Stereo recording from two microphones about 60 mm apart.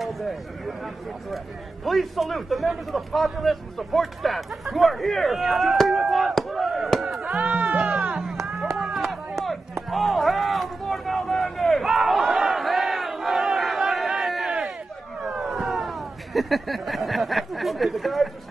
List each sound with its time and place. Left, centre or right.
0.0 s a man's voice: centre
1.9 s a man's voice: centre
7.3 s music: right
8.2 s music: centre
8.7 s a sound: centre
15.2 s cat: centre